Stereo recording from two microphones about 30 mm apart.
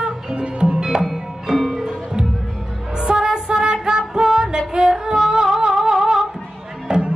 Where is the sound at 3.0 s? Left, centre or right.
Right.